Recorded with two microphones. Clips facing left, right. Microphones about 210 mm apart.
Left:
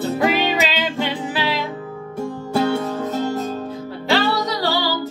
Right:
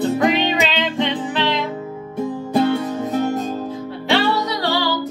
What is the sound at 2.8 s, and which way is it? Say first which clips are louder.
Music: right 2 dB; 15° right (ahead or behind).